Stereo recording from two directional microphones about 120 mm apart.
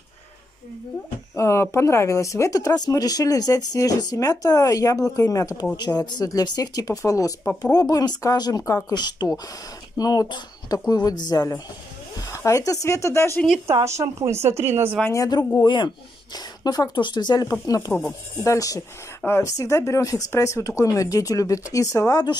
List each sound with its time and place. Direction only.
1.3 s speech: 25° left (ahead or behind)
13.8 s a woman's voice: 25° right (ahead or behind)
15.6 s speech: 40° left (ahead or behind)